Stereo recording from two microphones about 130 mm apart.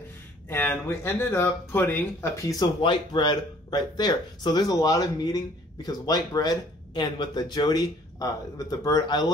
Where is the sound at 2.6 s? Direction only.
35° left (ahead or behind).